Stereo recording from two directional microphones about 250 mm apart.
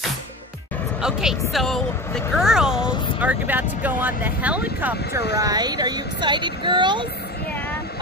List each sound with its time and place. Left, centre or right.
1.5 s speech: centre